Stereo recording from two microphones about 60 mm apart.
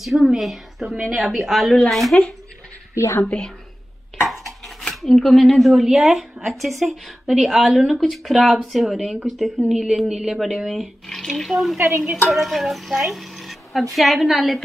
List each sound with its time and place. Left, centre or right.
0.0 s a woman's voice: centre
3.0 s a woman's voice: left
4.3 s a woman's voice: centre